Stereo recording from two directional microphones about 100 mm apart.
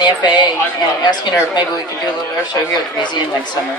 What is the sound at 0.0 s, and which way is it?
Speech, 45° left (ahead or behind).